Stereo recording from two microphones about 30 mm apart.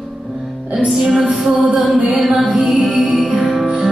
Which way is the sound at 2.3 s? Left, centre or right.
Right.